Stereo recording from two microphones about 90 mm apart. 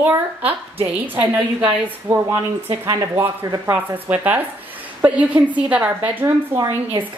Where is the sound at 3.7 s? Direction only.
20° right (ahead or behind).